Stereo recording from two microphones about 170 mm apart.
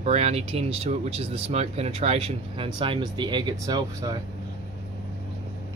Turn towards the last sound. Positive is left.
turn(degrees=-20)  # may be behind; listen again after turning